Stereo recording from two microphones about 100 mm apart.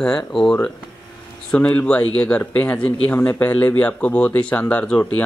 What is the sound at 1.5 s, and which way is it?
Speech, 15° left (ahead or behind).